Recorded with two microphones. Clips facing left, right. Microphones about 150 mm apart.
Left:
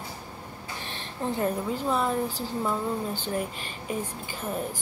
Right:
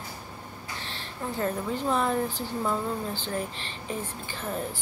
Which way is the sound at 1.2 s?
25° left (ahead or behind).